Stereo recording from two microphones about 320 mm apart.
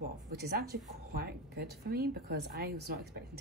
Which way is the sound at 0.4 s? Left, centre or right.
Right.